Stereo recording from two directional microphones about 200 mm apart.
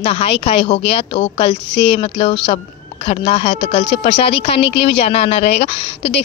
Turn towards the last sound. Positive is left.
turn(degrees=30)  # may be behind; listen again after turning